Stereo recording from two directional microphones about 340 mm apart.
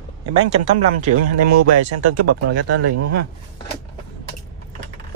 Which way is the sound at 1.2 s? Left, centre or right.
Right.